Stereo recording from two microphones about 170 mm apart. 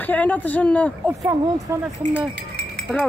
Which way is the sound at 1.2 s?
20° right (ahead or behind).